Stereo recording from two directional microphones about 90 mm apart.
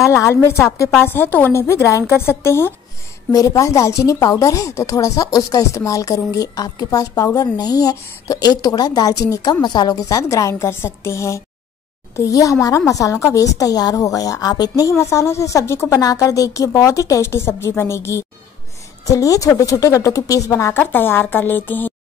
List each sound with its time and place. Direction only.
0.0 s a woman's voice: 30° left (ahead or behind)
3.3 s a woman's voice: 40° left (ahead or behind)
9.9 s a woman's voice: 35° left (ahead or behind)
20.7 s a woman's voice: 25° left (ahead or behind)